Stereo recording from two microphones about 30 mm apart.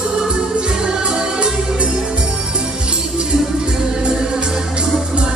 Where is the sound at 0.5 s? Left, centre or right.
Right.